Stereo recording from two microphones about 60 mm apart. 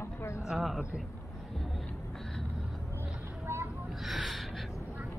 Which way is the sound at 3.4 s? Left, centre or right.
Right.